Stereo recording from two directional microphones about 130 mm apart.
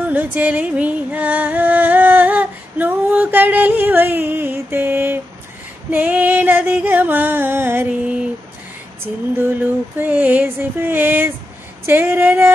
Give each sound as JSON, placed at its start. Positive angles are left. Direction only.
{"t": 0.1, "sound": "music", "side_deg": -15}